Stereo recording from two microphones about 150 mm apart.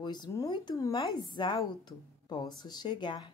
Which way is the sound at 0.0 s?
30° left (ahead or behind).